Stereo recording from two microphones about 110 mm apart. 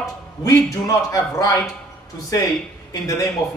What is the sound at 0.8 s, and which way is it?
A man's voice, 35° left (ahead or behind).